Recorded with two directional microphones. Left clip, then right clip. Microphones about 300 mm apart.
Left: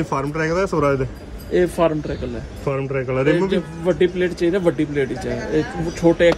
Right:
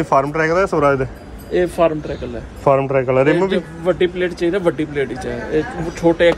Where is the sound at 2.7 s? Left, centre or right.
Centre.